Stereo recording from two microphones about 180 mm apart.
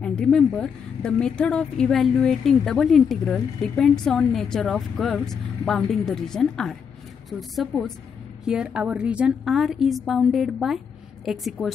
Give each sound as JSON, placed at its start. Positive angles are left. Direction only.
{"t": 0.0, "sound": "a woman's voice", "side_deg": 5}